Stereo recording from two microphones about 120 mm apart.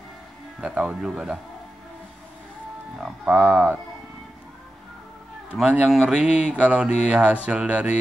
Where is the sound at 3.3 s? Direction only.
5° left (ahead or behind).